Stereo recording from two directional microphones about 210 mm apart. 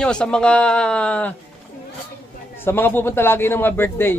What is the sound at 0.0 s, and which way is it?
Speech, 5° left (ahead or behind).